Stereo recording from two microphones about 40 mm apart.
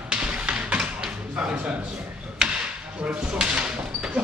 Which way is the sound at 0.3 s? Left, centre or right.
Right.